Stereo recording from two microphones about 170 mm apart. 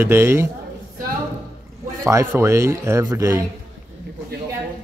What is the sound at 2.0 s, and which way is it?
Speech, 15° right (ahead or behind).